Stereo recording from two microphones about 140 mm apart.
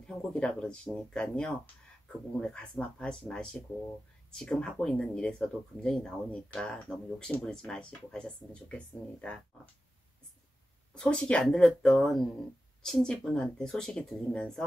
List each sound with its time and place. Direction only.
0.0 s speech: 5° left (ahead or behind)
11.0 s speech: 5° left (ahead or behind)